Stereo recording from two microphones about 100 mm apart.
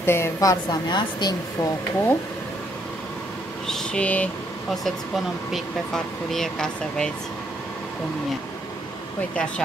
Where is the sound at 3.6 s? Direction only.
5° left (ahead or behind).